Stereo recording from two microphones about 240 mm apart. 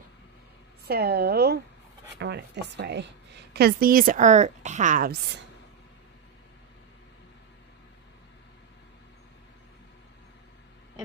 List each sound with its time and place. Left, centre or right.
0.8 s a woman's voice: right